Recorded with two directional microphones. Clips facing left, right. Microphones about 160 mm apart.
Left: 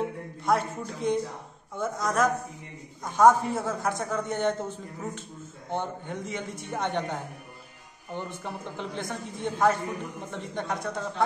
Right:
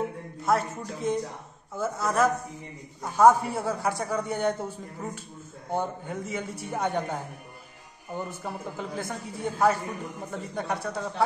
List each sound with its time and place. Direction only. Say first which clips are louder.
0.4 s speech: even; centre (ahead or behind)